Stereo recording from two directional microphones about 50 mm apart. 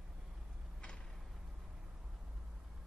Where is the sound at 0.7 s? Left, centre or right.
Centre.